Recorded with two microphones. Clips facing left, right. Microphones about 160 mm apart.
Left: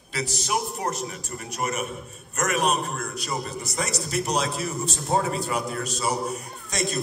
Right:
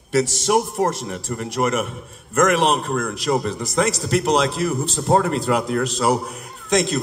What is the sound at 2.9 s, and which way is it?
A man's voice, 60° right (ahead or behind).